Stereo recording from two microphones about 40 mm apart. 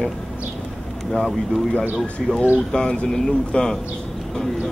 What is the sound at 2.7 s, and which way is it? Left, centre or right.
Speech, left.